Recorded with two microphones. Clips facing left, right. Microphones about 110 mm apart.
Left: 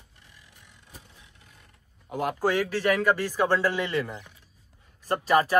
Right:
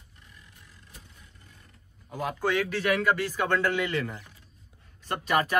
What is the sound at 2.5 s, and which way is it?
Speech, 35° left (ahead or behind).